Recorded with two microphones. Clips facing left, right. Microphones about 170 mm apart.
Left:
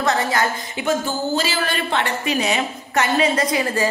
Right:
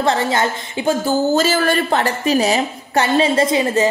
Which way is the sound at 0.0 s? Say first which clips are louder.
Right 3 dB; 30° right (ahead or behind).